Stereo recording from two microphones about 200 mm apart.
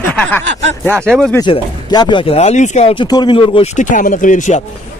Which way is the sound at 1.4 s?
20° left (ahead or behind).